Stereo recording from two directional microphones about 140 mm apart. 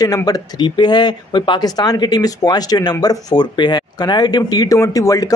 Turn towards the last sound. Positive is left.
turn(degrees=25)  # may be behind; listen again after turning